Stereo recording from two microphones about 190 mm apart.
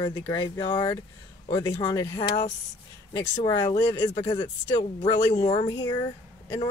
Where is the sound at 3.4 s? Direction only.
20° left (ahead or behind).